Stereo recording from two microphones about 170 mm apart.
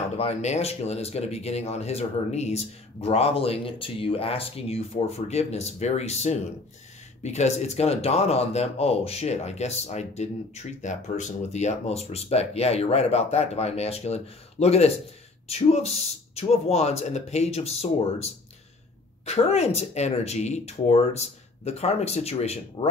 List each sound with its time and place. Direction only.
0.2 s speech: 40° left (ahead or behind)